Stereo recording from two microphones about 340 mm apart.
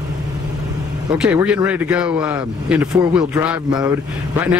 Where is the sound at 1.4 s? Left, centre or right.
Centre.